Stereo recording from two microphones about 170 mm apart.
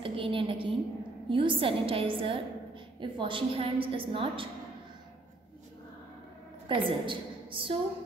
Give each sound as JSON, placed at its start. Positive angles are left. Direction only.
{"t": 0.0, "sound": "a sound", "side_deg": -30}
{"t": 1.3, "sound": "a woman's voice", "side_deg": -30}
{"t": 6.7, "sound": "a woman's voice", "side_deg": -30}